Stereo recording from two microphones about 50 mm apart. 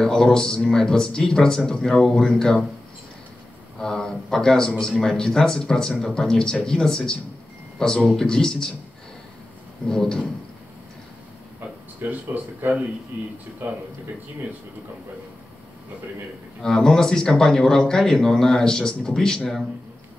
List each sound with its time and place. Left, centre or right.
0.0 s speech: centre
3.8 s speech: centre
9.8 s speech: centre
12.0 s speech: right
16.6 s speech: centre